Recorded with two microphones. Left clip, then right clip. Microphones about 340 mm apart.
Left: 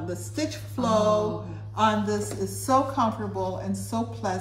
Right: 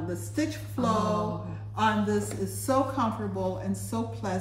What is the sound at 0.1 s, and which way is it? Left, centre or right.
A woman's voice, centre.